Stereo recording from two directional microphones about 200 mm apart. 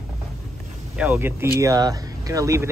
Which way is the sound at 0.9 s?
10° right (ahead or behind).